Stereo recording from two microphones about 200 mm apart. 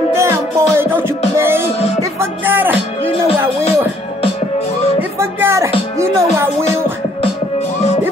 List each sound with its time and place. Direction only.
0.1 s music: 15° right (ahead or behind)
3.1 s music: 30° left (ahead or behind)
5.2 s music: 15° right (ahead or behind)